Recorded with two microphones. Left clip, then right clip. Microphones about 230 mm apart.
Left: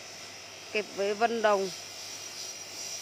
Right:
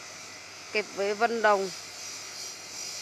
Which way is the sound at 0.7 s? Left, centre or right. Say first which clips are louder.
Right 1 dB; centre.